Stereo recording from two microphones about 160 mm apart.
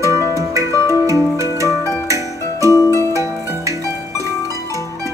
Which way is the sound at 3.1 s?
20° right (ahead or behind).